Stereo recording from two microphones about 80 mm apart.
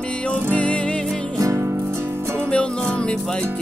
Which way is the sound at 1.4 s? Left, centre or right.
Right.